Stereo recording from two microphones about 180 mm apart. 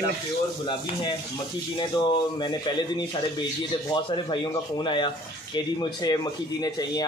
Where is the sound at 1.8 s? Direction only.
25° left (ahead or behind).